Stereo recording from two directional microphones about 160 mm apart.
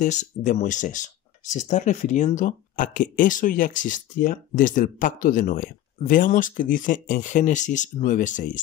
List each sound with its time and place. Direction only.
0.0 s speech: 50° left (ahead or behind)